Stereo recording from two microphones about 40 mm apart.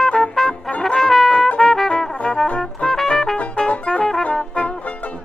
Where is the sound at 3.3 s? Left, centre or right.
Left.